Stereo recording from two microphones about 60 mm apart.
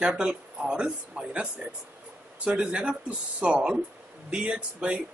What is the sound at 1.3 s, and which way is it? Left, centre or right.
Speech, right.